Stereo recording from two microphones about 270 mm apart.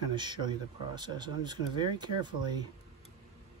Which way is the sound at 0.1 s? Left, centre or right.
Centre.